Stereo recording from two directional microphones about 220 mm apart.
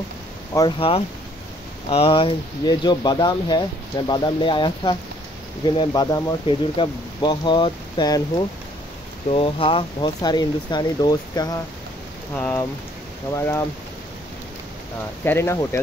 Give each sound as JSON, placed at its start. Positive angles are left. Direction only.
{"t": 0.6, "sound": "speech", "side_deg": 25}
{"t": 9.3, "sound": "speech", "side_deg": 25}
{"t": 15.2, "sound": "speech", "side_deg": 10}